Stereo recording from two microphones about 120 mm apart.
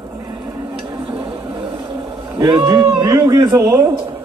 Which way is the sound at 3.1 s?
30° right (ahead or behind).